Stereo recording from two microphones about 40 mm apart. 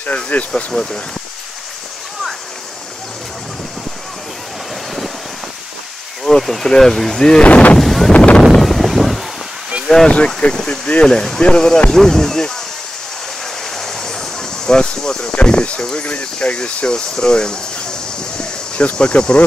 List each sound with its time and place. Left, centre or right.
0.0 s speech: left
0.7 s speech: centre
6.2 s speech: centre
7.4 s speech: left
7.8 s speech: centre
8.1 s speech: left
8.5 s wind noise: centre
10.0 s speech: left
11.1 s speech: centre
13.7 s a sound: centre
15.4 s speech: left
18.9 s speech: left